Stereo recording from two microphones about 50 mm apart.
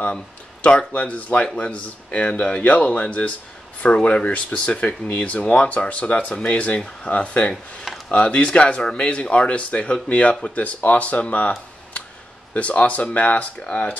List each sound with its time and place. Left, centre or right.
0.1 s speech: left
12.5 s speech: left